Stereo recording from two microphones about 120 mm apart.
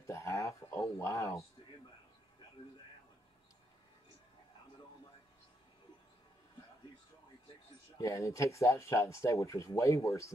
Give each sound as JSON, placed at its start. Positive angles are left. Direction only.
{"t": 0.0, "sound": "speech", "side_deg": 25}
{"t": 8.0, "sound": "speech", "side_deg": 25}